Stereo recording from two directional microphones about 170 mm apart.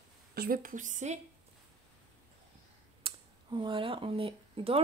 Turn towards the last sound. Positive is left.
turn(degrees=-35)  # may be behind; listen again after turning